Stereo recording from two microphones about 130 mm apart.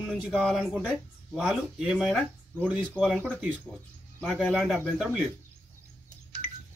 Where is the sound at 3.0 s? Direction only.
15° right (ahead or behind).